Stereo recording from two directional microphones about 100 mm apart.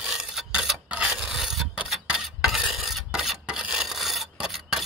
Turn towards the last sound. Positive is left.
turn(degrees=-5)  # may be behind; listen again after turning